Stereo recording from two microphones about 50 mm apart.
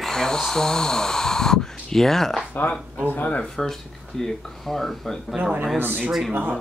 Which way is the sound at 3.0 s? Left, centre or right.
Left.